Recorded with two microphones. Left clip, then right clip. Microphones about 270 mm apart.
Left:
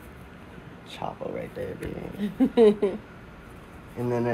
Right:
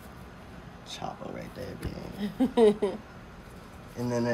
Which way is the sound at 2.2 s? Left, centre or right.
Right.